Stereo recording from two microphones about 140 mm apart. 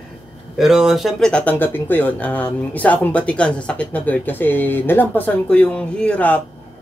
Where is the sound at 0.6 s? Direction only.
5° right (ahead or behind).